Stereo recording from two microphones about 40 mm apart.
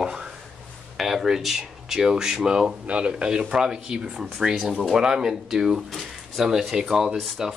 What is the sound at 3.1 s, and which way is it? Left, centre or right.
Speech, centre.